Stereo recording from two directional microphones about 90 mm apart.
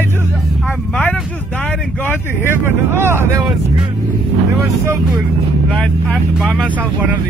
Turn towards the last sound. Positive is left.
turn(degrees=-10)  # may be behind; listen again after turning